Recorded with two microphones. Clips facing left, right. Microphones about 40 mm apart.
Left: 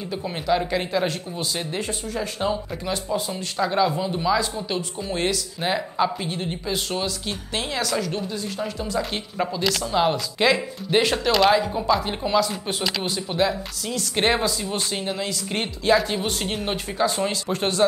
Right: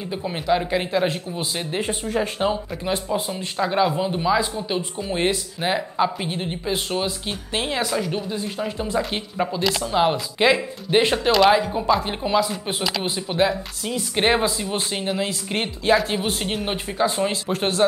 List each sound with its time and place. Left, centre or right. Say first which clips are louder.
0.2 s speech: right 1 dB; centre
1.8 s speech: right 4 dB; right
9.1 s speech: right 2 dB; centre
11.3 s speech: right 2 dB; centre